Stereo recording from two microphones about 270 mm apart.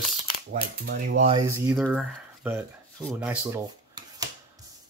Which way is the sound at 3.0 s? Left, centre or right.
Centre.